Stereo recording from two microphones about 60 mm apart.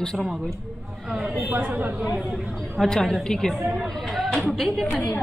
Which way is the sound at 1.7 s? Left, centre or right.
Right.